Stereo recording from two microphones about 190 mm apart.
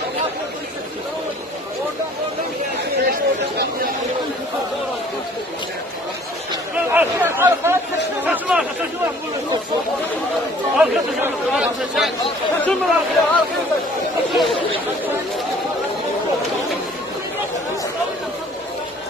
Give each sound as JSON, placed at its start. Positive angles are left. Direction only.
{"t": 3.1, "sound": "chatter", "side_deg": -50}
{"t": 6.9, "sound": "chatter", "side_deg": -10}
{"t": 10.8, "sound": "chatter", "side_deg": -5}
{"t": 12.6, "sound": "chatter", "side_deg": 10}